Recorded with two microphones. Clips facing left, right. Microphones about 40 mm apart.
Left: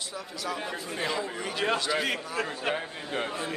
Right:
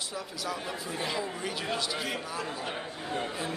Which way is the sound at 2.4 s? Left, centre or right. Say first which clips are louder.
Left 4 dB; left.